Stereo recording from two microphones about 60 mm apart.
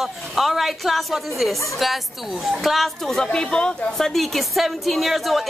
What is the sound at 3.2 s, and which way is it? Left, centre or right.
Speech, centre.